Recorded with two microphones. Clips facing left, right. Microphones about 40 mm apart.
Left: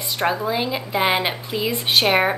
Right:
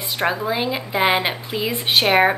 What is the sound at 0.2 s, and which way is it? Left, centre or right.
A woman's voice, centre.